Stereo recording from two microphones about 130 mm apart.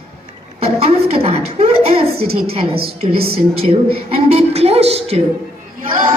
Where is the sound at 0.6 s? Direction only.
50° right (ahead or behind).